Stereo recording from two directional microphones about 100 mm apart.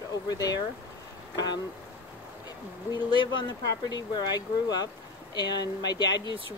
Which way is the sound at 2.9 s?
45° left (ahead or behind).